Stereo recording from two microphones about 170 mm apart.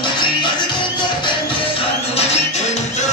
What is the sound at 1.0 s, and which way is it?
Music, 30° left (ahead or behind).